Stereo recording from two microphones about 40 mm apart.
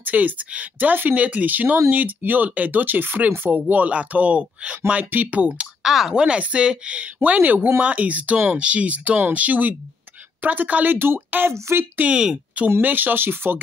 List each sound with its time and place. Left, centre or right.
0.0 s speech: right
1.1 s speech: right
3.5 s speech: right
5.1 s speech: right
5.4 s speech: right
5.8 s speech: centre
6.1 s speech: right
7.2 s speech: right
7.8 s speech: right
11.2 s speech: right
12.1 s speech: right
12.8 s speech: right